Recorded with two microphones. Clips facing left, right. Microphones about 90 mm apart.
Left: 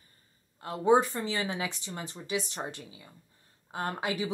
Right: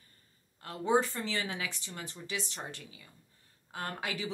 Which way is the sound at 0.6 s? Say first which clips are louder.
Left 5 dB; 20° left (ahead or behind).